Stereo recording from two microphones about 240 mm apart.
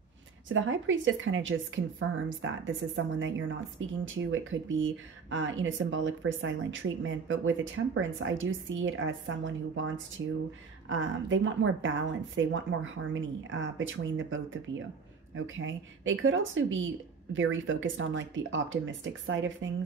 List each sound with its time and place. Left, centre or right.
0.5 s speech: right